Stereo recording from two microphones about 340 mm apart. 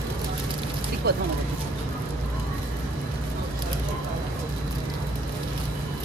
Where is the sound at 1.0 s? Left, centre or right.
Right.